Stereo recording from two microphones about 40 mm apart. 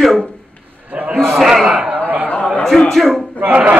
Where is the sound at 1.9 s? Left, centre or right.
Right.